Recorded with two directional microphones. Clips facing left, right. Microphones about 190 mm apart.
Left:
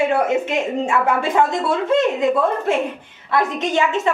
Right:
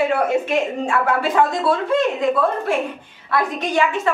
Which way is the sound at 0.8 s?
20° left (ahead or behind).